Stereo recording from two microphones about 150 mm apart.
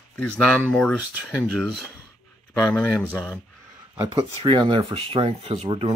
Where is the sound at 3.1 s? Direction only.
10° left (ahead or behind).